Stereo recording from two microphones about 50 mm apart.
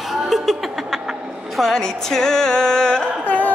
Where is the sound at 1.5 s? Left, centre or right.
Centre.